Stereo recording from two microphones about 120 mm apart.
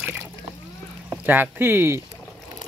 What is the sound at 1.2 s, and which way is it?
Speech, 15° right (ahead or behind).